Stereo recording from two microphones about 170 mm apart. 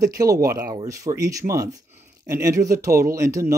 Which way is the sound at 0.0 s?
20° right (ahead or behind).